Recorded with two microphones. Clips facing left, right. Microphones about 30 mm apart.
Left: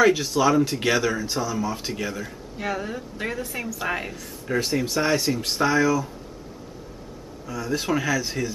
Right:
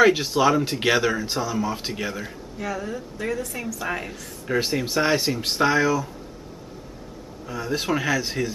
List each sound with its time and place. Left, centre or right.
0.0 s speech: centre
2.6 s a woman's voice: left
4.5 s speech: centre
7.4 s speech: centre